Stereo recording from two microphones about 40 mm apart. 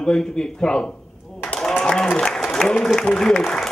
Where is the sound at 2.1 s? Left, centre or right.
Centre.